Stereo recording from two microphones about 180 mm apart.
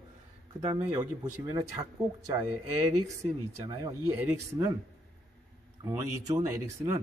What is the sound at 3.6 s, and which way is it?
Speech, 20° right (ahead or behind).